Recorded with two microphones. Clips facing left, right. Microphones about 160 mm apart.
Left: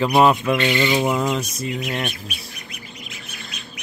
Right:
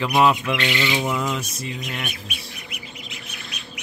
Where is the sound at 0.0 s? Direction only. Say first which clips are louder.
Left 3 dB; 40° left (ahead or behind).